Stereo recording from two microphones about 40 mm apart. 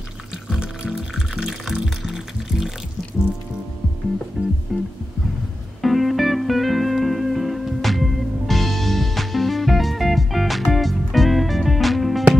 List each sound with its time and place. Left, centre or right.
0.5 s music: centre
4.4 s music: right
5.8 s music: centre